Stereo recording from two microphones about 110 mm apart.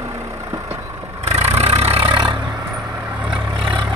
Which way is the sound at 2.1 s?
50° right (ahead or behind).